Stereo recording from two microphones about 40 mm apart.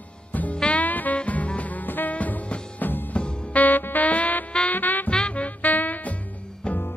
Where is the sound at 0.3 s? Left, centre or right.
Left.